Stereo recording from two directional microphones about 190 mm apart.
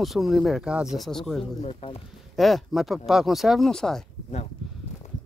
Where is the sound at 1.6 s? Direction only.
30° left (ahead or behind).